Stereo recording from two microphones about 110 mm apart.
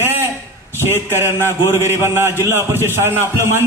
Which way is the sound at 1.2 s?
25° left (ahead or behind).